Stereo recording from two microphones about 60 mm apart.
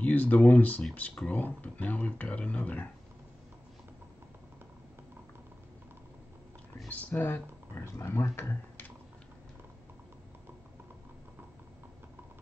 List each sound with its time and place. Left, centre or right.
0.0 s speech: left
6.9 s speech: left
7.8 s speech: left